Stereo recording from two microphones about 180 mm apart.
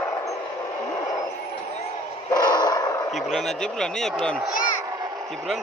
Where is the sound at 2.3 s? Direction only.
25° left (ahead or behind).